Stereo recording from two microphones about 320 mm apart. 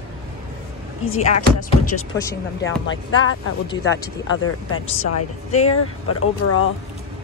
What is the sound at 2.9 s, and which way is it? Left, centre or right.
Speech, left.